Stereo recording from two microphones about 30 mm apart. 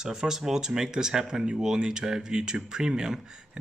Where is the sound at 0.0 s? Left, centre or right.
Right.